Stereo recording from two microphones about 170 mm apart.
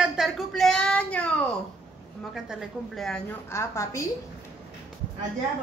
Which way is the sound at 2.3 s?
5° right (ahead or behind).